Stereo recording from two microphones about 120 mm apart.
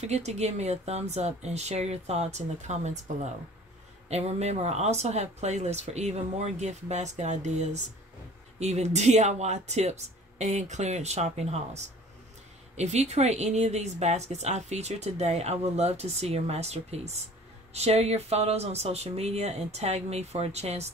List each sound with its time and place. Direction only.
0.0 s speech: 65° right (ahead or behind)